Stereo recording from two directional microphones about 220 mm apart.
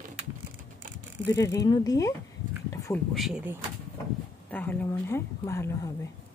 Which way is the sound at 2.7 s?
15° left (ahead or behind).